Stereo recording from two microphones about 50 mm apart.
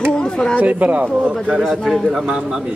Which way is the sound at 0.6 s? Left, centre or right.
Right.